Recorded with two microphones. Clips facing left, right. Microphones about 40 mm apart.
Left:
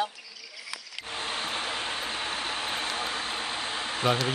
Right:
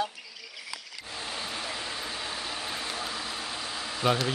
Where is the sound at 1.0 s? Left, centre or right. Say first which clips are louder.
Left 4 dB; left.